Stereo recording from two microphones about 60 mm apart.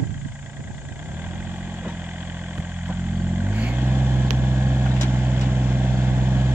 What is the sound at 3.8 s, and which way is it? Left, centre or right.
Vehicle, right.